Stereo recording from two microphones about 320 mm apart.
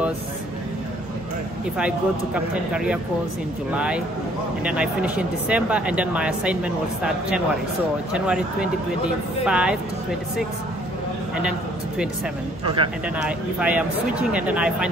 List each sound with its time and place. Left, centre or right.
1.8 s speech: centre
12.6 s speech: centre
13.2 s speech: centre